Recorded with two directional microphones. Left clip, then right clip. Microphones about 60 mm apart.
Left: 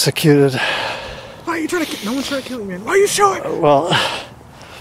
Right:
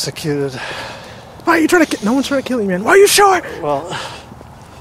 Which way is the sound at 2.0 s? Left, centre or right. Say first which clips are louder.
Right 6 dB; left.